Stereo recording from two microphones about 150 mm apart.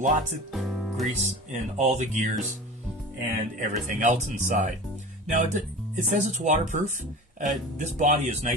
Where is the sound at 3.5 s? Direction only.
55° right (ahead or behind).